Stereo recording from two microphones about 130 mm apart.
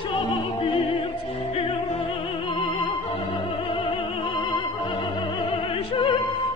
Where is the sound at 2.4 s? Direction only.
40° left (ahead or behind).